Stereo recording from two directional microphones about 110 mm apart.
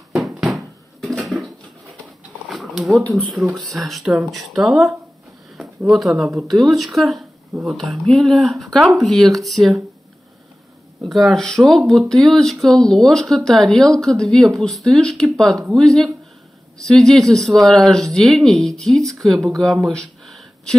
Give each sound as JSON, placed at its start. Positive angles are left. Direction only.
{"t": 0.1, "sound": "bouncing", "side_deg": 0}
{"t": 2.4, "sound": "dog", "side_deg": 0}
{"t": 3.3, "sound": "speech", "side_deg": 0}
{"t": 11.0, "sound": "speech", "side_deg": 0}